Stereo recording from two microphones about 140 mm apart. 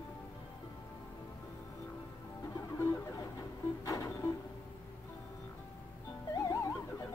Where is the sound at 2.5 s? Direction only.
20° left (ahead or behind).